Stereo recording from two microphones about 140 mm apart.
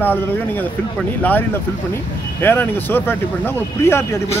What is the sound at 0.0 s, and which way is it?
Speech, 15° left (ahead or behind).